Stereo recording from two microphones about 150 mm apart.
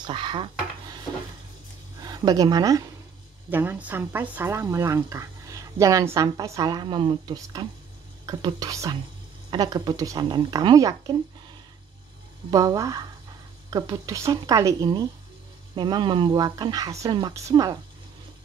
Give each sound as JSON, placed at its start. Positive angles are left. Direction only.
{"t": 0.0, "sound": "speech", "side_deg": -30}
{"t": 2.0, "sound": "speech", "side_deg": -25}
{"t": 3.4, "sound": "speech", "side_deg": -10}
{"t": 12.4, "sound": "speech", "side_deg": -25}